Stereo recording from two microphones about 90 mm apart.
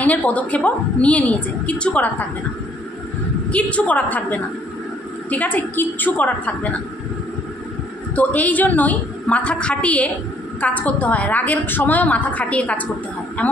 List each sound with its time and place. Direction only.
0.0 s a woman's voice: 15° left (ahead or behind)
3.4 s a woman's voice: 15° left (ahead or behind)
5.3 s a woman's voice: 20° left (ahead or behind)
8.2 s a woman's voice: 15° left (ahead or behind)